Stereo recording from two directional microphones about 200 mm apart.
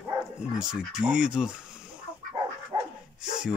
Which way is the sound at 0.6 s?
5° right (ahead or behind).